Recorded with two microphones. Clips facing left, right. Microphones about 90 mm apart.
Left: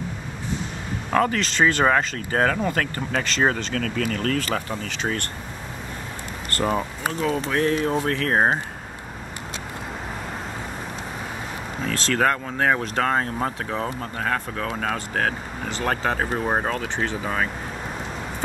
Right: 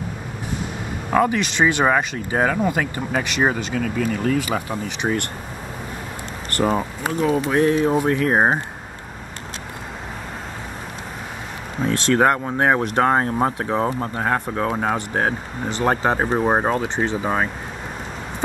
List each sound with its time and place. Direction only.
1.1 s speech: 15° right (ahead or behind)
6.8 s speech: 15° right (ahead or behind)
11.8 s speech: 25° right (ahead or behind)